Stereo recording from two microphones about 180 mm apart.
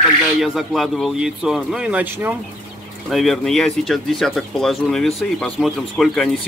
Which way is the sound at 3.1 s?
Centre (ahead or behind).